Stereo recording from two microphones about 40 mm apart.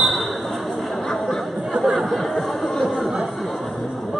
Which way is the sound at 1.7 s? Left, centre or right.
Centre.